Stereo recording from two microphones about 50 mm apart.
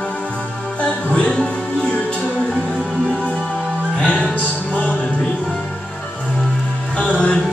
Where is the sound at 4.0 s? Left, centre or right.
Left.